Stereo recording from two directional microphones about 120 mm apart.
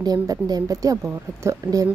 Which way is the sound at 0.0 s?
35° right (ahead or behind).